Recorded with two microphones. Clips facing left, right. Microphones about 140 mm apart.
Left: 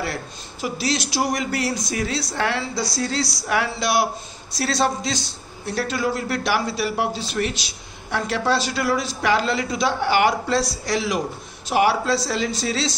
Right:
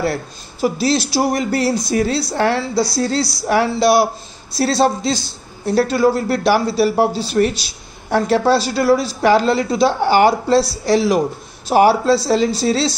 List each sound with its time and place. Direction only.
0.6 s a man's voice: 35° right (ahead or behind)